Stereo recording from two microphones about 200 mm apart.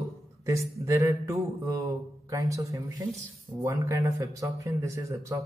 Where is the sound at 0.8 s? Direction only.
15° right (ahead or behind).